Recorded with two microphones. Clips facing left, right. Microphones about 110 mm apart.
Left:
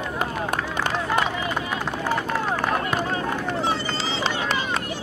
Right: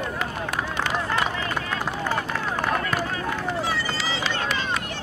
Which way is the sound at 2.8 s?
20° left (ahead or behind).